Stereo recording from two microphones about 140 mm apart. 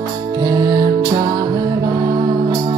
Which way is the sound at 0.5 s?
25° right (ahead or behind).